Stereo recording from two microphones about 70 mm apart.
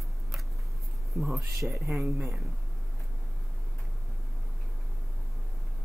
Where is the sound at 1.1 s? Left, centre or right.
Centre.